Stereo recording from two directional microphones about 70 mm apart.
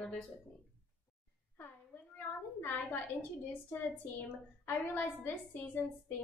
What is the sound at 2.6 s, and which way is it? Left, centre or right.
A woman's voice, left.